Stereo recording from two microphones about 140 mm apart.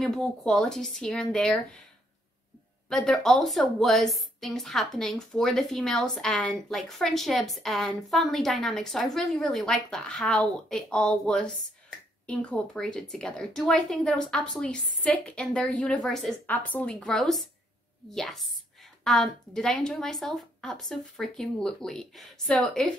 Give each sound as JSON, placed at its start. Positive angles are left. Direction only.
{"t": 0.0, "sound": "a woman's voice", "side_deg": 5}
{"t": 2.9, "sound": "a woman's voice", "side_deg": 5}